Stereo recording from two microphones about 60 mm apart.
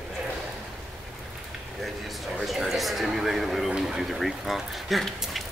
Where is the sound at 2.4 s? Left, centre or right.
Centre.